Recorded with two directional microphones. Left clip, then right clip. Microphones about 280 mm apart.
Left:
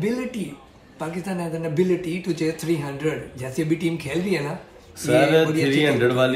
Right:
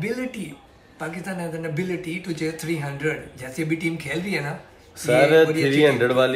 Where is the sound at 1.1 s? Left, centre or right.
Centre.